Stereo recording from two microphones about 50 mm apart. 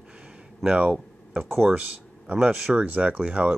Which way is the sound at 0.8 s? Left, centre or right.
Right.